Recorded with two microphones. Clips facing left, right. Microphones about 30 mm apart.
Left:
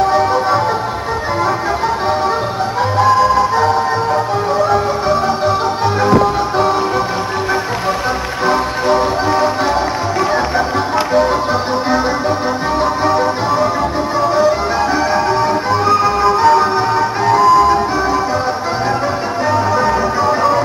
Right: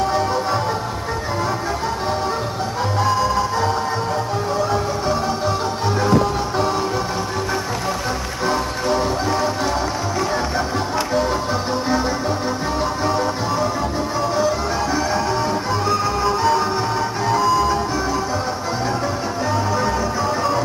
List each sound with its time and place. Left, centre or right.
0.0 s music: centre
3.0 s music: centre
8.5 s music: left
13.0 s music: centre
15.7 s music: centre
19.5 s music: centre